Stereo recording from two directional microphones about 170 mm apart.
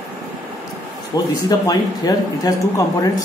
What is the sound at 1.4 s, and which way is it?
Speech, 20° left (ahead or behind).